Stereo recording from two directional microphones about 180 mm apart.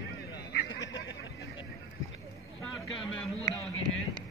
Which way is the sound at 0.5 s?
75° left (ahead or behind).